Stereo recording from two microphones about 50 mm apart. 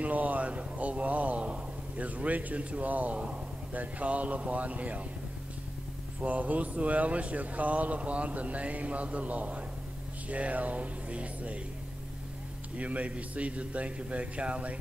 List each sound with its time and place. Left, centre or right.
0.0 s a sound: right
2.8 s speech: right
6.2 s speech: right
12.7 s speech: right